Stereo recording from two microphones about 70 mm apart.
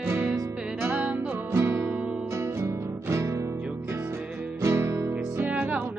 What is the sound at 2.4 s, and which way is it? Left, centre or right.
Music, right.